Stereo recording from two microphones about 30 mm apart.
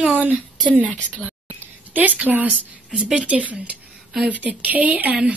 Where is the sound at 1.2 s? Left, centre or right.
Right.